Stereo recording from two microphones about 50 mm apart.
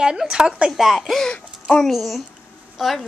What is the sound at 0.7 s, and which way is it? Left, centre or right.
Speech, centre.